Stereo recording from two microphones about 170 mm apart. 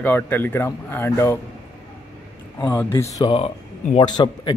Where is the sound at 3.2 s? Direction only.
30° left (ahead or behind).